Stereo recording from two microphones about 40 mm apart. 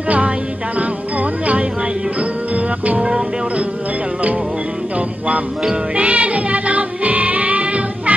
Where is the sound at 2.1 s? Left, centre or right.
Right.